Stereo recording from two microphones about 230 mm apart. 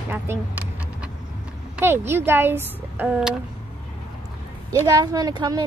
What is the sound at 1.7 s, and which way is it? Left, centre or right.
Speech, centre.